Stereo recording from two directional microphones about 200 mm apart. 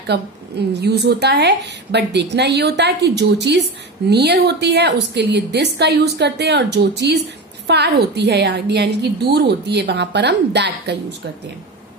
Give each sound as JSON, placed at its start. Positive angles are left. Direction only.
{"t": 0.0, "sound": "a woman's voice", "side_deg": -55}